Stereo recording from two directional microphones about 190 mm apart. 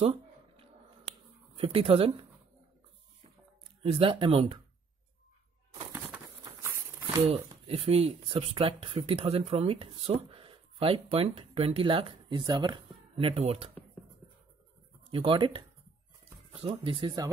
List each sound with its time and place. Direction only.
1.6 s speech: 30° right (ahead or behind)
3.8 s speech: 25° right (ahead or behind)
6.4 s a sound: 15° right (ahead or behind)
7.2 s speech: 30° right (ahead or behind)
15.0 s speech: 30° right (ahead or behind)